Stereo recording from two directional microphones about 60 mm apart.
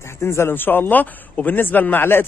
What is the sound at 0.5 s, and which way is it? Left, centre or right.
Speech, left.